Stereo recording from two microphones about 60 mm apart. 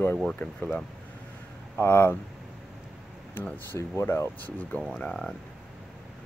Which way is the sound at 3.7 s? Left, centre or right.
Left.